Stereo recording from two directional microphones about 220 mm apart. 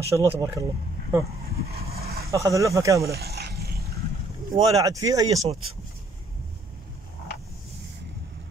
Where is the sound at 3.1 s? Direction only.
45° right (ahead or behind).